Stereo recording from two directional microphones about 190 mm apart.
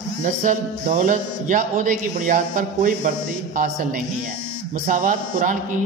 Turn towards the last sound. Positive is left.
turn(degrees=-45)  # may be behind; listen again after turning